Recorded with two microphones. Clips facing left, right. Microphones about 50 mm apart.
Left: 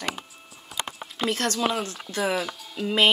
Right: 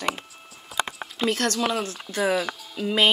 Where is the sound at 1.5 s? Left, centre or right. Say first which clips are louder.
Right 1 dB; centre.